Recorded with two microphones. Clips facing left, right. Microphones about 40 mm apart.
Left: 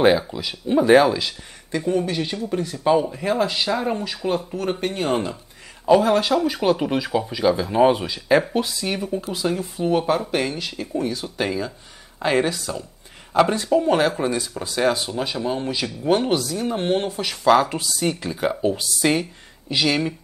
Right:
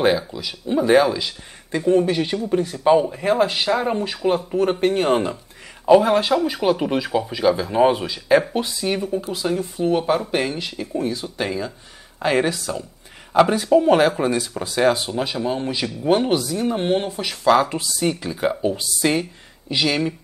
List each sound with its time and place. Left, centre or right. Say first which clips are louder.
0.0 s speech: left 2 dB; centre
1.7 s speech: right 5 dB; centre
3.4 s speech: right 2 dB; right
3.7 s speech: right 2 dB; centre
5.9 s speech: right 2 dB; centre
11.3 s speech: even; centre